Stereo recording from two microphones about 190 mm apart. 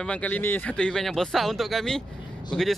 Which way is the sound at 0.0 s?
5° left (ahead or behind).